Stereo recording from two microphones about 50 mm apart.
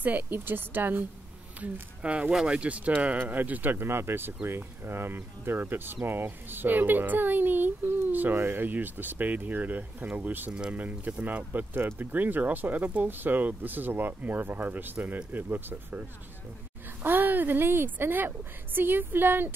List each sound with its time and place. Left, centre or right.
0.0 s a woman's voice: right
2.0 s speech: right
3.8 s a woman's voice: right
15.0 s a woman's voice: right